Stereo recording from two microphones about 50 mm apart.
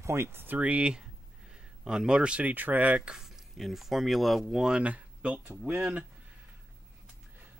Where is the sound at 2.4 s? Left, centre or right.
Right.